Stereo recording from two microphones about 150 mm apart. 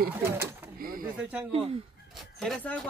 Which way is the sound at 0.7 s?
75° right (ahead or behind).